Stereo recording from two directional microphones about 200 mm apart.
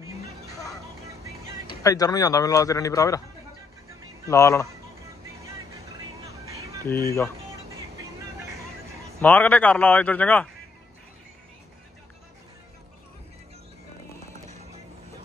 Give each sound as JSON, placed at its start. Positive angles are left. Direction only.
{"t": 1.8, "sound": "speech", "side_deg": 15}
{"t": 4.3, "sound": "speech", "side_deg": 15}
{"t": 6.2, "sound": "music", "side_deg": -15}
{"t": 6.8, "sound": "speech", "side_deg": 15}
{"t": 9.2, "sound": "speech", "side_deg": 10}